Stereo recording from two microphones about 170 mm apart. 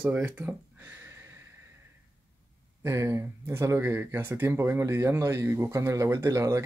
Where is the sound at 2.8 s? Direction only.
15° right (ahead or behind).